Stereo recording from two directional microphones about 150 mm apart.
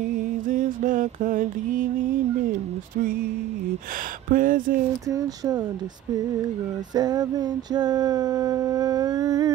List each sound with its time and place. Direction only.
0.1 s mantra: 60° right (ahead or behind)
4.3 s a sound: 65° right (ahead or behind)
5.1 s music: 25° right (ahead or behind)
7.0 s music: 25° right (ahead or behind)